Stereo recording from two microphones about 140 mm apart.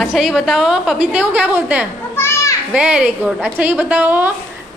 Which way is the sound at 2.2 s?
20° left (ahead or behind).